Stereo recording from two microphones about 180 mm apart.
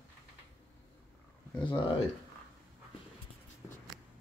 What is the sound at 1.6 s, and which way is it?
Speech, 25° left (ahead or behind).